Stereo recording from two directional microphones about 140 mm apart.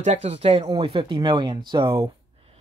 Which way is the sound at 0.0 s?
50° right (ahead or behind).